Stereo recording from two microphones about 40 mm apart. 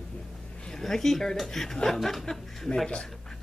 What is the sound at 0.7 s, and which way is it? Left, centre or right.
Speech, centre.